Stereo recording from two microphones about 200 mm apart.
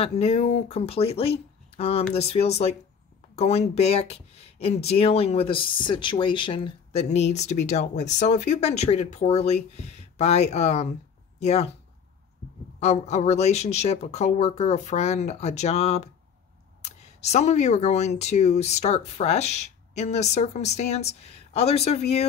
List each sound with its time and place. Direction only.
0.0 s speech: 30° left (ahead or behind)
12.8 s speech: 35° left (ahead or behind)